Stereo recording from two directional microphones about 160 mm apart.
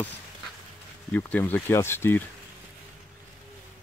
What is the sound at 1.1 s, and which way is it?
Speech, 10° left (ahead or behind).